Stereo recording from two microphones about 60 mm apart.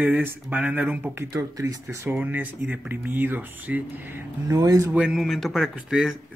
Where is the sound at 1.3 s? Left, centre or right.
Right.